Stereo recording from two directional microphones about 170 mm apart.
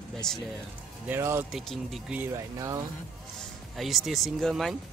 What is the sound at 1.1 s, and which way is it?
Speech, 15° right (ahead or behind).